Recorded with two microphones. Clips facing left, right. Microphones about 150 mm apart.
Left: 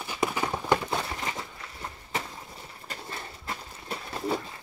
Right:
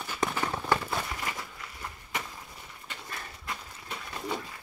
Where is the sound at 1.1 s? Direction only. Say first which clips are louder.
Left 2 dB; 25° left (ahead or behind).